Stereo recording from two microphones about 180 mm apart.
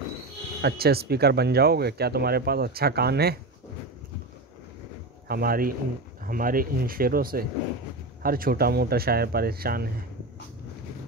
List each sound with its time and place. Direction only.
0.6 s speech: 60° right (ahead or behind)
5.3 s speech: 55° right (ahead or behind)